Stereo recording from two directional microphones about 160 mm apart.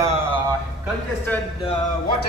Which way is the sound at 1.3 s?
10° left (ahead or behind).